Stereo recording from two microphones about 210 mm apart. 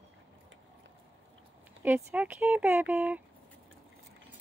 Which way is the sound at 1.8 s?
10° right (ahead or behind).